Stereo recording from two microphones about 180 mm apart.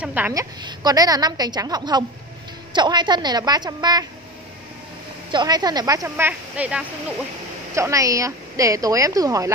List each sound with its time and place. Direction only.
0.0 s speech: 10° right (ahead or behind)
0.3 s a woman's voice: 20° right (ahead or behind)
5.3 s a woman's voice: 25° right (ahead or behind)